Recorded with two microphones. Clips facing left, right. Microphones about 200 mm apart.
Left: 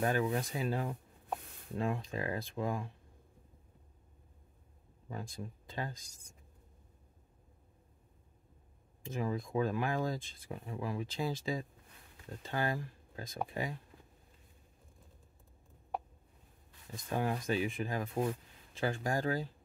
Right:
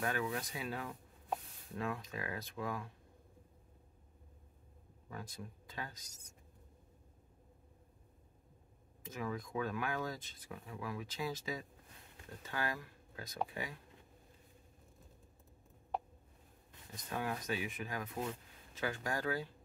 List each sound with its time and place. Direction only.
0.0 s speech: 30° left (ahead or behind)
5.1 s speech: 25° left (ahead or behind)
9.0 s speech: 30° left (ahead or behind)
16.9 s speech: 30° left (ahead or behind)